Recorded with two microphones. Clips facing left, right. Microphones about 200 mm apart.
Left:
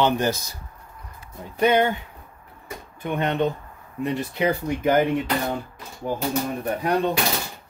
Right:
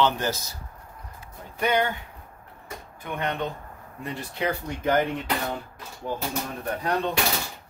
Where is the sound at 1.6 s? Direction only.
25° left (ahead or behind).